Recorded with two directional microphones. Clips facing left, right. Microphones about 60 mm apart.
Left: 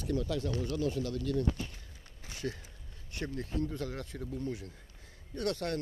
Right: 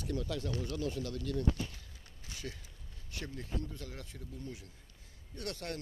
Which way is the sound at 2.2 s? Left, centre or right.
Left.